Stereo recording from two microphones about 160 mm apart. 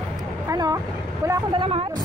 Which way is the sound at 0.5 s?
20° right (ahead or behind).